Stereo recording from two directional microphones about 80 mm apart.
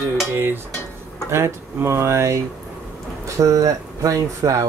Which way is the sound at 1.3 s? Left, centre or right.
Right.